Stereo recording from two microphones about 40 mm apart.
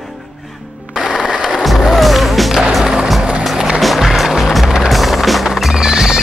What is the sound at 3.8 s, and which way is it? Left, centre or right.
Music, centre.